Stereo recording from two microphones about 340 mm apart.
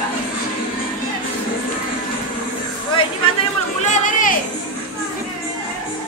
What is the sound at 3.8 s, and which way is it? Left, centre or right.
Chatter, left.